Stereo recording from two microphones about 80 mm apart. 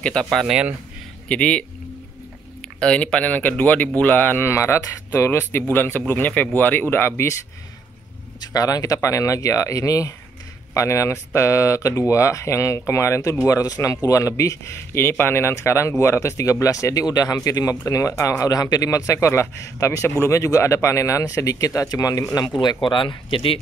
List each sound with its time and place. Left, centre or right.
0.0 s speech: centre
0.5 s speech: centre
1.3 s speech: centre
2.8 s speech: centre
4.5 s speech: left
8.5 s a man's voice: left
22.6 s speech: left